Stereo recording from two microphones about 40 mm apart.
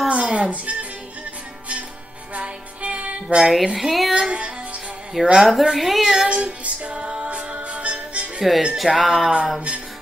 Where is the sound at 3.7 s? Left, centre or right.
Centre.